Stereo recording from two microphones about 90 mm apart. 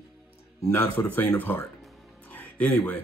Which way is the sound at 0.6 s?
20° left (ahead or behind).